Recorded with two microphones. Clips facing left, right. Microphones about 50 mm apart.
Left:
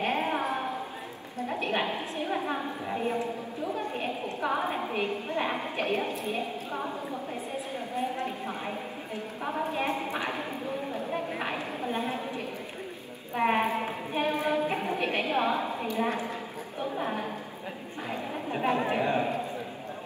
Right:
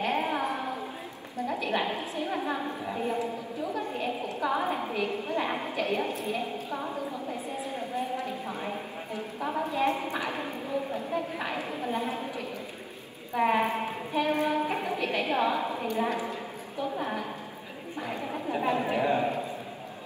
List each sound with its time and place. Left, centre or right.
0.0 s a sound: left
2.0 s a woman's voice: left
7.9 s clip-clop: left
9.5 s a woman's voice: left
14.7 s a sound: left
15.3 s a woman's voice: left
18.5 s speech: left